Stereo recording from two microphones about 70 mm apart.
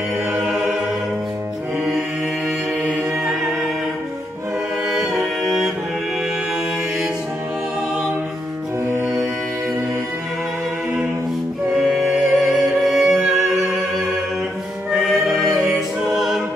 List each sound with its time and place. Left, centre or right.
0.5 s music: centre
2.8 s music: centre
5.4 s music: centre
9.0 s music: right
11.8 s music: centre
14.9 s music: centre